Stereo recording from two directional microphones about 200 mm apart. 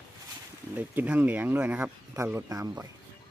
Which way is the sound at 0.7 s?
10° right (ahead or behind).